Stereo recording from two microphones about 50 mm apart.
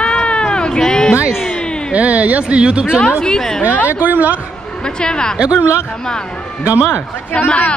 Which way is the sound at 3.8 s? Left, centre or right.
Right.